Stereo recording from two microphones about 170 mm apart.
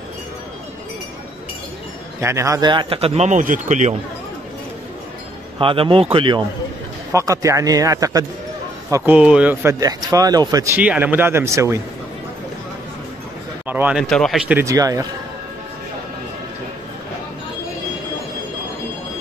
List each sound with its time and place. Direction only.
2.1 s speech: 15° right (ahead or behind); by 3.9 s 45° right (ahead or behind)
5.6 s speech: 30° right (ahead or behind)
7.1 s a man's voice: 15° right (ahead or behind)
8.9 s speech: 10° right (ahead or behind)
13.7 s speech: 10° right (ahead or behind)
14.0 s speech: 5° left (ahead or behind)
14.5 s a man's voice: 15° right (ahead or behind)